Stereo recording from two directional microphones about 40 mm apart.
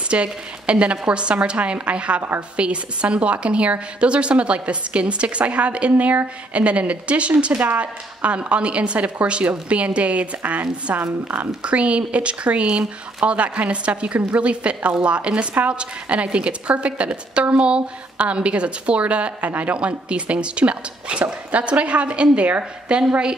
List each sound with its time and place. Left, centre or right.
0.1 s a woman's voice: right